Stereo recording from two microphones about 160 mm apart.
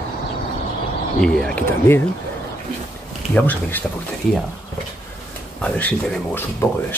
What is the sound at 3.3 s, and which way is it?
Speech, 10° left (ahead or behind).